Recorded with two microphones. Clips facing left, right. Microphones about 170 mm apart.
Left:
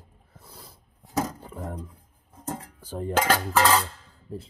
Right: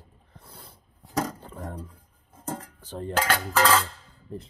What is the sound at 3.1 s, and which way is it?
Speech, 20° left (ahead or behind).